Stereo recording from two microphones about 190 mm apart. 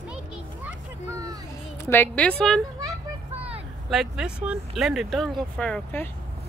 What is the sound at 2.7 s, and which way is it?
Children playing, 15° right (ahead or behind).